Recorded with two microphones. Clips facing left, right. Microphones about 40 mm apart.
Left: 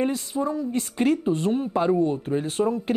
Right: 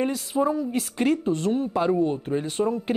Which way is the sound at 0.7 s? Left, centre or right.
Centre.